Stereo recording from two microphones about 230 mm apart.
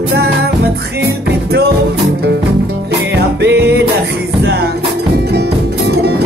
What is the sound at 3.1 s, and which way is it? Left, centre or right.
Music, right.